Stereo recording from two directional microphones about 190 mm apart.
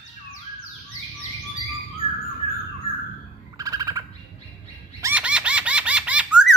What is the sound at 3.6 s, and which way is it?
Bird, 20° right (ahead or behind).